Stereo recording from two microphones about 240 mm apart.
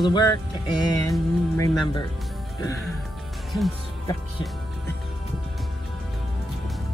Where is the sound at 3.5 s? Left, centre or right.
Centre.